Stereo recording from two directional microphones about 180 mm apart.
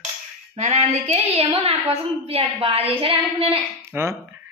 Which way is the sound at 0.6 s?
40° right (ahead or behind).